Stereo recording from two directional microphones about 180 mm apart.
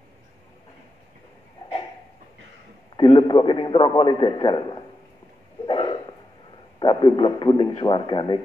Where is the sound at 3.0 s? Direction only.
25° left (ahead or behind).